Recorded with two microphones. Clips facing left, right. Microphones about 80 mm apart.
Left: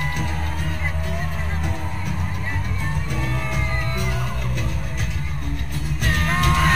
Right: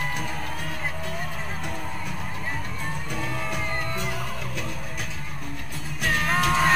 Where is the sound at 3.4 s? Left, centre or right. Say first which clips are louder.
Left 2 dB; centre.